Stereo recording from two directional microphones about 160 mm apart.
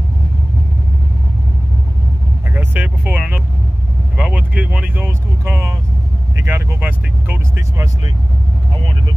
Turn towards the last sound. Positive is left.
turn(degrees=-15)  # may be behind; listen again after turning